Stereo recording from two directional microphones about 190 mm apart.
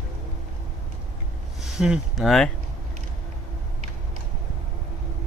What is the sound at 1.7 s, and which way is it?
Speech, centre (ahead or behind).